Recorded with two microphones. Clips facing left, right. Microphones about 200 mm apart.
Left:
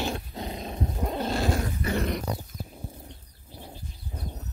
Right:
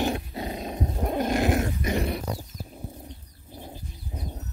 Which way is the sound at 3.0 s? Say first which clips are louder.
Right 3 dB; 15° right (ahead or behind).